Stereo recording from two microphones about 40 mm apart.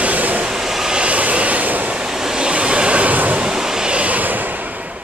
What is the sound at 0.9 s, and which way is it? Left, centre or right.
Vehicle, right.